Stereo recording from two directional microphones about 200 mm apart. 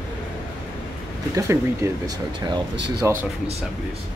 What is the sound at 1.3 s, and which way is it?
Speech, 15° right (ahead or behind).